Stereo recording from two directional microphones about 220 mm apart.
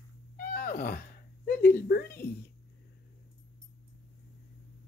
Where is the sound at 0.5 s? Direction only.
40° left (ahead or behind).